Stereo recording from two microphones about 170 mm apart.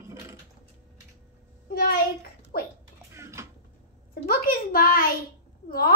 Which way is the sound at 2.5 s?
65° left (ahead or behind).